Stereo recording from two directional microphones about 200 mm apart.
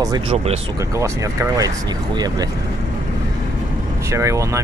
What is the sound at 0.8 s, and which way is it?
Speech, 15° right (ahead or behind).